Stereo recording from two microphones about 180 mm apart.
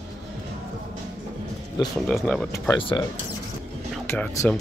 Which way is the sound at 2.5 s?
15° left (ahead or behind).